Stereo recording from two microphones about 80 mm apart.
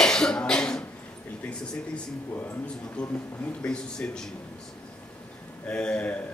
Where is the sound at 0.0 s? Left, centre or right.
Centre.